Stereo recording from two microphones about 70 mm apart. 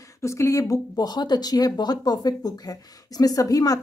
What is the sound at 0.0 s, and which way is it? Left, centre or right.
Speech, left.